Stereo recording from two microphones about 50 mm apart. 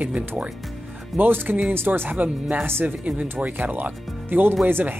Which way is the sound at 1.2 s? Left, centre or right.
Right.